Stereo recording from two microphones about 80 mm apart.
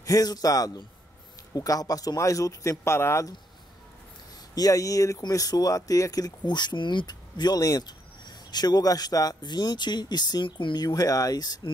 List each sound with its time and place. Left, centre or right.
0.0 s speech: left
4.6 s speech: left